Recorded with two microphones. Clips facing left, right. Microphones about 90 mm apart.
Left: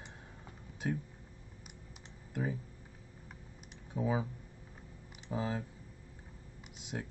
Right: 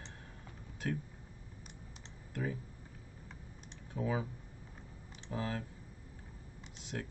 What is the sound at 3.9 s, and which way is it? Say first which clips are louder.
Speech: left 2 dB; 15° left (ahead or behind).